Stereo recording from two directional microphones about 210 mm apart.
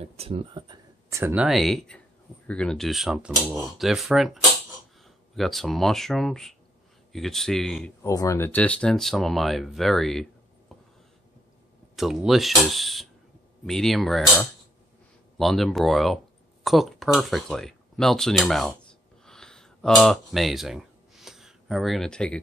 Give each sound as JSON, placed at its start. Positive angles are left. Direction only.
{"t": 0.0, "sound": "speech", "side_deg": -30}
{"t": 1.2, "sound": "speech", "side_deg": -5}
{"t": 8.0, "sound": "speech", "side_deg": 15}
{"t": 11.9, "sound": "speech", "side_deg": 0}
{"t": 19.2, "sound": "a sound", "side_deg": 5}